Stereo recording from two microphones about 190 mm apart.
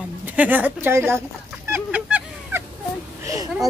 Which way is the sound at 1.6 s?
10° right (ahead or behind).